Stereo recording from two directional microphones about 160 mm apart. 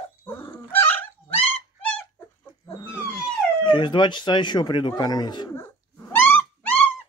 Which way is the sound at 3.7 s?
30° left (ahead or behind).